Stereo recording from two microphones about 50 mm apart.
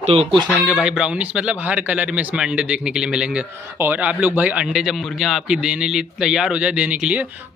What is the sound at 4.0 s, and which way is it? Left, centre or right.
Speech, right.